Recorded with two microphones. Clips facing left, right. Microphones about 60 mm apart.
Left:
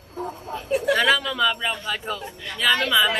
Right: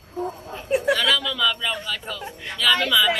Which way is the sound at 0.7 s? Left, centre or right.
Right.